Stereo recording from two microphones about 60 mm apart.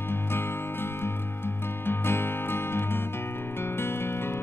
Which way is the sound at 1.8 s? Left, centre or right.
Left.